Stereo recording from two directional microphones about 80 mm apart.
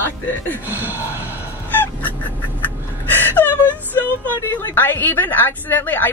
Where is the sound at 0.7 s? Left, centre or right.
Right.